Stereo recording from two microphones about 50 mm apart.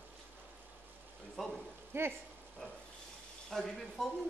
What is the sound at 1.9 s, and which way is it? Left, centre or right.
Speech, right.